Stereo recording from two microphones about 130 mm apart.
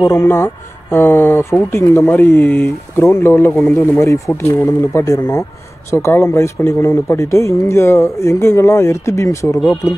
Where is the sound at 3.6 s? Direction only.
5° left (ahead or behind).